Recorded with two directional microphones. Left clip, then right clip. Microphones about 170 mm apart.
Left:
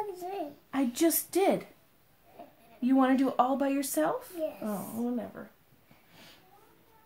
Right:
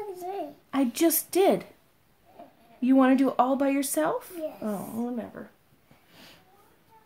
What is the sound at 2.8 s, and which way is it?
A woman's voice, 40° right (ahead or behind).